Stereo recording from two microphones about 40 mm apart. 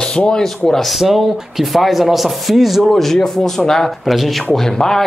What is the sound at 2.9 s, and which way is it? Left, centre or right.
Speech, centre.